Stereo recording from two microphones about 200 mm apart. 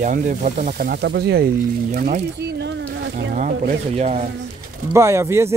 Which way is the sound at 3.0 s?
55° right (ahead or behind).